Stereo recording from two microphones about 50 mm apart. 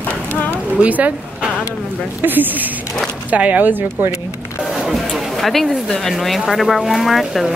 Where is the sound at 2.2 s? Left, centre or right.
Right.